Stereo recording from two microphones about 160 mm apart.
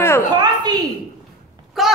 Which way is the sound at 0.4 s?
25° right (ahead or behind).